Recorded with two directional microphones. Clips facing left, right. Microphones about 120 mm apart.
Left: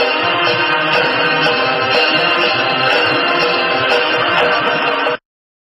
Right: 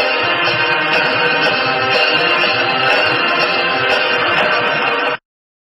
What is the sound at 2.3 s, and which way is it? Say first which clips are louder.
Music: left 1 dB; 15° left (ahead or behind).